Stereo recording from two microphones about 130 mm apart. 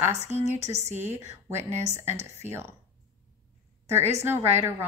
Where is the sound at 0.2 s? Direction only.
60° right (ahead or behind).